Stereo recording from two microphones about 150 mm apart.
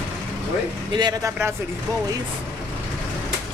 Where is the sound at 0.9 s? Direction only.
30° right (ahead or behind).